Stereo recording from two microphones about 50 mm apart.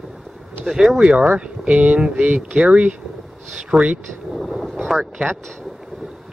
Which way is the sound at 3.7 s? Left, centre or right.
Centre.